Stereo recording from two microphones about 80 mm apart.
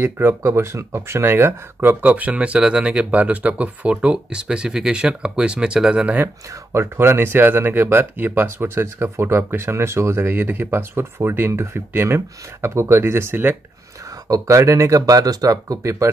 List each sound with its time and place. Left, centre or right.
0.0 s speech: right; by 6.1 s centre
6.1 s speech: right
14.2 s speech: right